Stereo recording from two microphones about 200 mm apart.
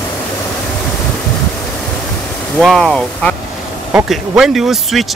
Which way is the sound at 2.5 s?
Centre (ahead or behind).